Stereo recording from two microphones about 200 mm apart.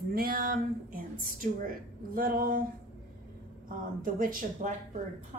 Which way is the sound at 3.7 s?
45° right (ahead or behind).